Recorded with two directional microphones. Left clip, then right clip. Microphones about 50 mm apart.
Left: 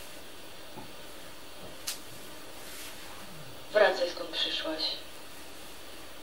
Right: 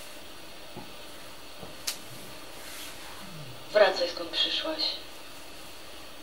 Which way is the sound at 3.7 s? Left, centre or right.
Right.